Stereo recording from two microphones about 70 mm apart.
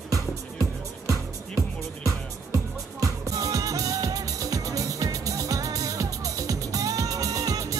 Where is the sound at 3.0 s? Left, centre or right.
Right.